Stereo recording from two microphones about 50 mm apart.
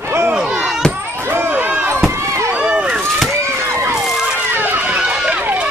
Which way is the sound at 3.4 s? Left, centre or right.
Right.